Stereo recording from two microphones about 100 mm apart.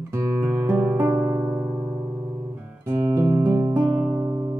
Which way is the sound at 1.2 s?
20° right (ahead or behind).